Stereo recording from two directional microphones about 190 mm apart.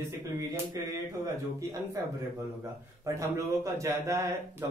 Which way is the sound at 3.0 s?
15° right (ahead or behind).